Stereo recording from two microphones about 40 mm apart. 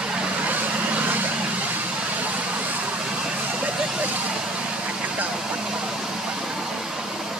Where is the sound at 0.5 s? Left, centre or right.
Right.